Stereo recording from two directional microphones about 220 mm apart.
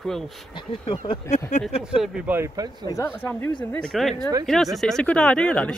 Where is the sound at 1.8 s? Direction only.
5° right (ahead or behind).